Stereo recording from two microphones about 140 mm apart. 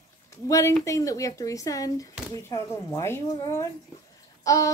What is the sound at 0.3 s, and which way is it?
Speech, 20° left (ahead or behind).